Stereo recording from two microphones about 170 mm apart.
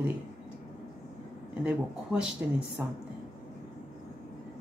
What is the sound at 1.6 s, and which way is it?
Speech, 5° right (ahead or behind).